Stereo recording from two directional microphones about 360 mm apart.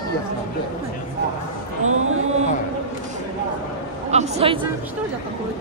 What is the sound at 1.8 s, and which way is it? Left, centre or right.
Speech, right.